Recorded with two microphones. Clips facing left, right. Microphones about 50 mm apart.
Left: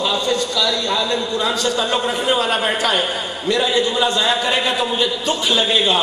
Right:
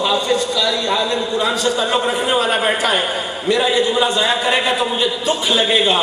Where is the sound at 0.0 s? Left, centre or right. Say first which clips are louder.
Right 2 dB; centre.